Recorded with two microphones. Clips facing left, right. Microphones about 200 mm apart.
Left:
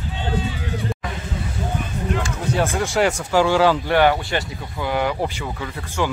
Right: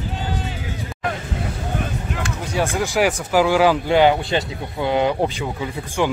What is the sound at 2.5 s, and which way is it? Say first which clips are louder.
Speech: right 1 dB; centre (ahead or behind).